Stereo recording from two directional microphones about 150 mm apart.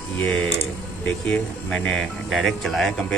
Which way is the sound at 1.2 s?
5° left (ahead or behind).